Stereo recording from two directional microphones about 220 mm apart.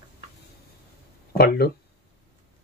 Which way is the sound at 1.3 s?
45° left (ahead or behind).